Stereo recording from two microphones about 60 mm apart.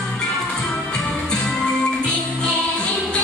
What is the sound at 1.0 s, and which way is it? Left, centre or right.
Music, centre.